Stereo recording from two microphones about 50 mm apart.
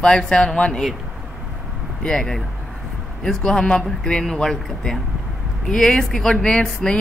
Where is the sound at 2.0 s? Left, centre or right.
Centre.